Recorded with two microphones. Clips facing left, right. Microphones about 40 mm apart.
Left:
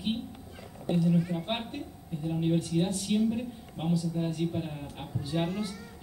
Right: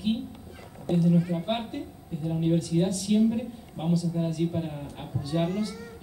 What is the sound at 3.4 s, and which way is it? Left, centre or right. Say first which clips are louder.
A woman's voice: right 3 dB; centre.